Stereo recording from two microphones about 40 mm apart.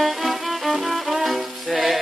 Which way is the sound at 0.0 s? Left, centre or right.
Centre.